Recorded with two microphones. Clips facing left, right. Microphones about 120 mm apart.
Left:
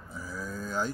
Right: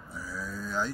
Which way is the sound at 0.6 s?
45° left (ahead or behind).